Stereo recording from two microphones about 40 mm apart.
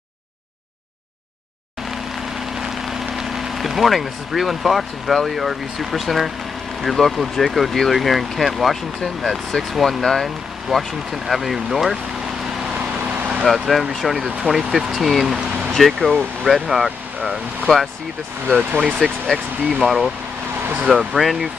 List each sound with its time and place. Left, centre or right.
2.7 s speech: centre
12.7 s vehicle: right
13.5 s speech: centre
17.7 s speech: centre
18.5 s speech: right
19.0 s speech: centre
19.7 s speech: centre
21.1 s speech: centre